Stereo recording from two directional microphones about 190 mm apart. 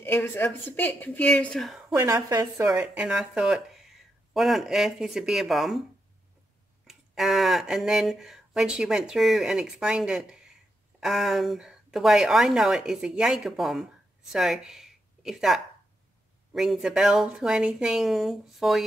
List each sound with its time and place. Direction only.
0.0 s a woman's voice: 10° left (ahead or behind)
2.0 s a woman's voice: 15° right (ahead or behind); by 5.9 s centre (ahead or behind)
6.9 s speech: centre (ahead or behind)